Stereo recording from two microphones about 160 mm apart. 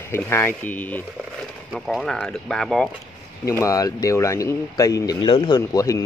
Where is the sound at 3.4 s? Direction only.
20° left (ahead or behind).